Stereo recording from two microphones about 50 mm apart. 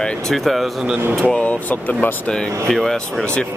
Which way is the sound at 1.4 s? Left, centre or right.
Left.